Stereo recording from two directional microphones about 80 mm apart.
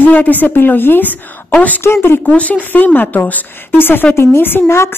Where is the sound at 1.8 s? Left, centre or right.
Left.